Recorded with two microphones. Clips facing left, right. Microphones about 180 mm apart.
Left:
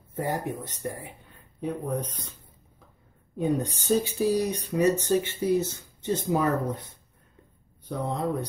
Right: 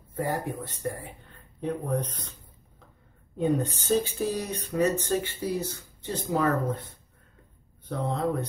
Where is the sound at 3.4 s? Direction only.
10° left (ahead or behind).